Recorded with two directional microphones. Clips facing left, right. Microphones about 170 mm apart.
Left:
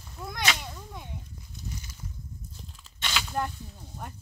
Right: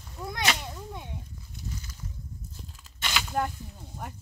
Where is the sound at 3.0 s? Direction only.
10° right (ahead or behind).